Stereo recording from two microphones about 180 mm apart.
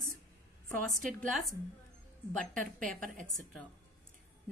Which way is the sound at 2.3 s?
5° left (ahead or behind).